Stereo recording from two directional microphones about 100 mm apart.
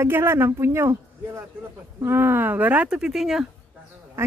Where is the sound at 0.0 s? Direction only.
25° right (ahead or behind); by 3.4 s 5° right (ahead or behind).